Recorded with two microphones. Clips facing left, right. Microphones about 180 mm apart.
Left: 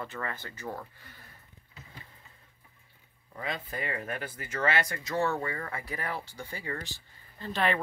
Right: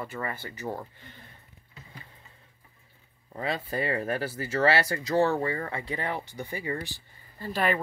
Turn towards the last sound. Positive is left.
turn(degrees=-5)  # may be behind; listen again after turning